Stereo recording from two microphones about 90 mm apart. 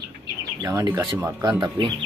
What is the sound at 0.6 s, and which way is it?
Speech, 40° right (ahead or behind).